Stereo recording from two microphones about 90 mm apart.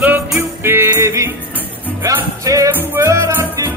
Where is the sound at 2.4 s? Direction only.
35° right (ahead or behind).